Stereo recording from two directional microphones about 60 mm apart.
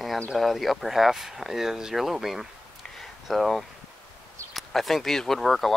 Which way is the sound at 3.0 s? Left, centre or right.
Centre.